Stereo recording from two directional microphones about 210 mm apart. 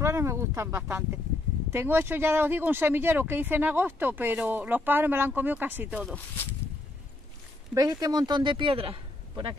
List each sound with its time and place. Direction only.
0.0 s speech: 15° right (ahead or behind)
6.1 s speech: 10° left (ahead or behind)
7.7 s speech: 15° right (ahead or behind)